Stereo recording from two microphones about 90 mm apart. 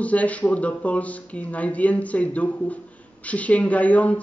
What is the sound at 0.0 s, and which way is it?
A woman's voice, 15° left (ahead or behind).